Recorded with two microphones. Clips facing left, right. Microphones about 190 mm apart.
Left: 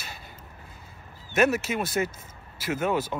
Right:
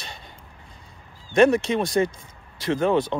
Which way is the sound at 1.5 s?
5° left (ahead or behind).